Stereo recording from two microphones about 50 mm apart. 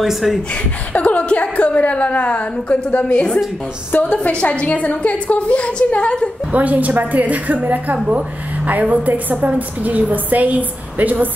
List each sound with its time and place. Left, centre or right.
0.0 s speech: centre
0.9 s a woman's voice: left
6.5 s a woman's voice: right